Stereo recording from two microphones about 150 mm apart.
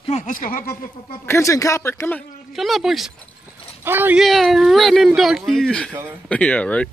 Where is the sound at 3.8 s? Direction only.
15° right (ahead or behind).